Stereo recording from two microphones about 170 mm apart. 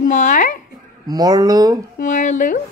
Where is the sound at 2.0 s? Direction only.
50° left (ahead or behind).